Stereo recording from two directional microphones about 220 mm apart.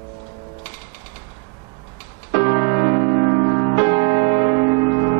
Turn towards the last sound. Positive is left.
turn(degrees=-25)  # may be behind; listen again after turning